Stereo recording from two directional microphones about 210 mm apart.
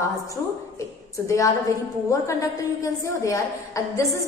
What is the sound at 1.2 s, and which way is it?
Speech, 15° left (ahead or behind).